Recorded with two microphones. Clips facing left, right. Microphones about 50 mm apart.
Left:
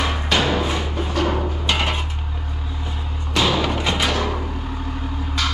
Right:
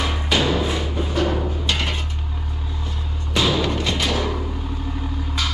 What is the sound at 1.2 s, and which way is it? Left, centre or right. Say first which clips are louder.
Music: left 1 dB; left.